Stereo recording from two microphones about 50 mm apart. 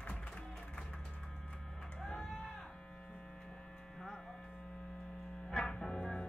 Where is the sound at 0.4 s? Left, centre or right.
Centre.